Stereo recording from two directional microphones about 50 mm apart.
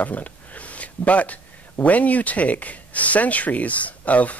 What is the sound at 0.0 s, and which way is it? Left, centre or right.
Speech, left.